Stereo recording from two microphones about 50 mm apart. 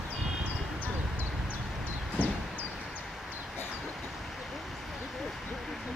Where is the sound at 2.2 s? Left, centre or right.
Left.